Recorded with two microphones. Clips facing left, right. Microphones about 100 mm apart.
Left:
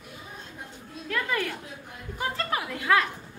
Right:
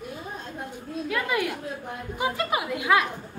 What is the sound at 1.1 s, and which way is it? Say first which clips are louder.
Speech: right 2 dB; 10° right (ahead or behind).